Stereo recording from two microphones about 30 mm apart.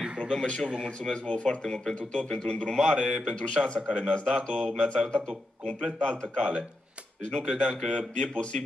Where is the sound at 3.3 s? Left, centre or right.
Left.